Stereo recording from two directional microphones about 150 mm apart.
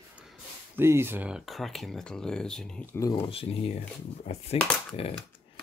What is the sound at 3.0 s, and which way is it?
Speech, 20° left (ahead or behind).